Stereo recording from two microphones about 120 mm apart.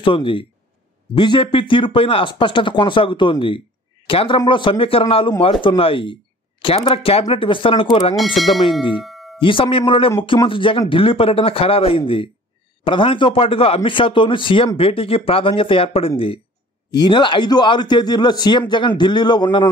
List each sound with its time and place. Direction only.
0.0 s speech: 45° left (ahead or behind)
8.2 s speech: centre (ahead or behind)
9.0 s music: centre (ahead or behind)
9.4 s speech: 45° left (ahead or behind)
16.9 s a man's voice: 40° left (ahead or behind)